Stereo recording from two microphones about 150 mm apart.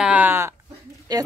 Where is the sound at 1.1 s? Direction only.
25° right (ahead or behind).